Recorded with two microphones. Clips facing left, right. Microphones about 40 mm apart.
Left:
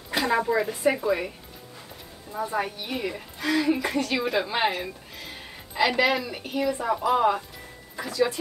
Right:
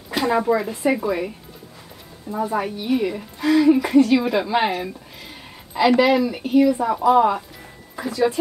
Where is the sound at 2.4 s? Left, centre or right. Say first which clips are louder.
Right 7 dB; centre.